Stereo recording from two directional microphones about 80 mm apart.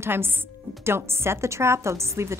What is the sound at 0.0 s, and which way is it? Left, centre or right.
A woman's voice, right.